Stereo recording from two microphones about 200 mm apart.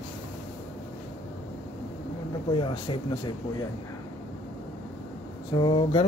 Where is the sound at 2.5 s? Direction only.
25° left (ahead or behind).